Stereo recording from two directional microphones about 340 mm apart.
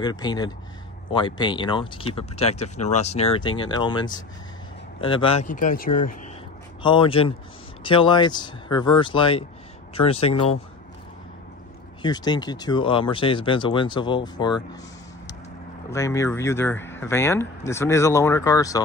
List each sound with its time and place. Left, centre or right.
0.0 s speech: centre
12.0 s speech: centre
15.9 s speech: centre